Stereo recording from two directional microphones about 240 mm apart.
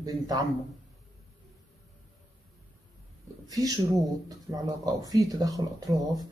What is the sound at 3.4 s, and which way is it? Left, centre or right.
Speech, centre.